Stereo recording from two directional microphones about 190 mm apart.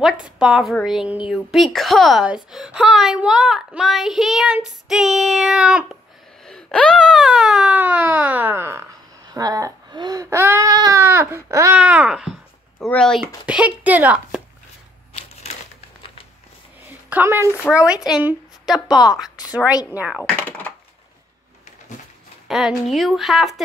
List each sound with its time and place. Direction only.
0.0 s a woman's voice: 5° right (ahead or behind)
12.7 s a woman's voice: 5° left (ahead or behind)
17.1 s a woman's voice: 10° right (ahead or behind)
20.2 s speech: 10° left (ahead or behind)
22.5 s a woman's voice: centre (ahead or behind)